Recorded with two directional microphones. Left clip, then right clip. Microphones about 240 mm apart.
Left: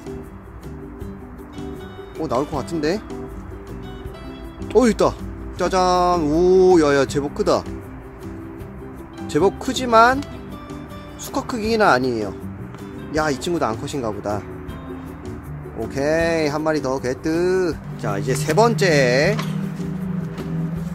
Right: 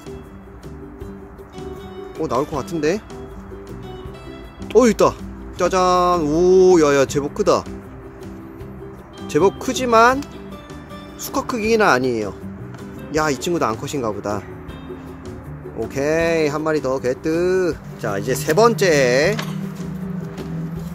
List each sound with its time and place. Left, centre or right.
2.2 s speech: centre
4.6 s speech: centre
9.3 s speech: centre
11.3 s speech: centre
15.9 s speech: centre